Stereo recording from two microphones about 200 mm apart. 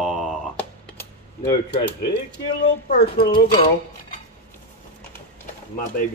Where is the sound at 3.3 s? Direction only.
25° left (ahead or behind).